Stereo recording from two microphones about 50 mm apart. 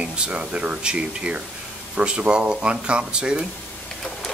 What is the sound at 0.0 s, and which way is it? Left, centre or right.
Speech, right.